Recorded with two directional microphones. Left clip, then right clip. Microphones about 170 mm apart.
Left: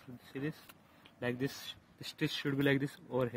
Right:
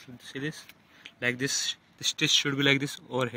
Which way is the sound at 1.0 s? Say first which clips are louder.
Right 8 dB; 20° right (ahead or behind).